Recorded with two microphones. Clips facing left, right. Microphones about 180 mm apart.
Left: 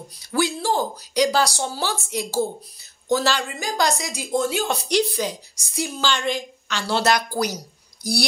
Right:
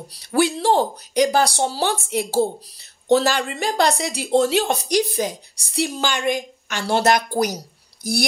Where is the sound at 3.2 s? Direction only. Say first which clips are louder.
Right 3 dB; 60° right (ahead or behind); by 4.6 s 75° right (ahead or behind).